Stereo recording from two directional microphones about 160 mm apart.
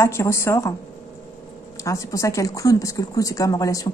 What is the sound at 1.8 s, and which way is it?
A woman's voice, 20° left (ahead or behind).